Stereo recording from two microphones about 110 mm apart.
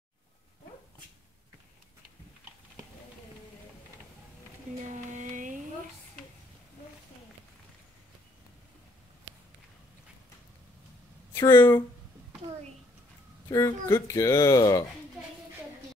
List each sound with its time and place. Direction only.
11.3 s speech: 20° left (ahead or behind)
13.5 s speech: 30° left (ahead or behind)